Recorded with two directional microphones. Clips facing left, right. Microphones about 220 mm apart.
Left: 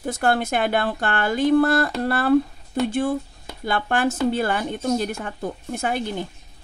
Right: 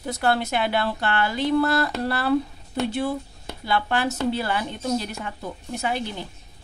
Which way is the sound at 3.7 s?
50° left (ahead or behind).